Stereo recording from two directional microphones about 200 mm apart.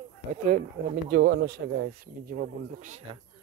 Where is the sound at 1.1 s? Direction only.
50° right (ahead or behind); by 3.2 s 35° right (ahead or behind).